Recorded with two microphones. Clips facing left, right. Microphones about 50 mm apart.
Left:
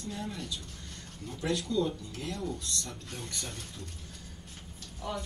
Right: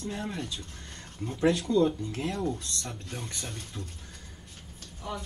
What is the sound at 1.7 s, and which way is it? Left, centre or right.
Speech, right.